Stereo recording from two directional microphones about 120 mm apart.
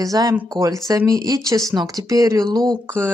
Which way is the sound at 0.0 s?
30° right (ahead or behind).